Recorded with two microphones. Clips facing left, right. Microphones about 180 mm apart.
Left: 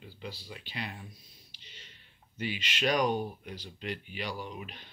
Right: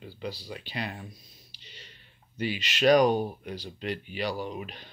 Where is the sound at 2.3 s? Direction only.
35° right (ahead or behind).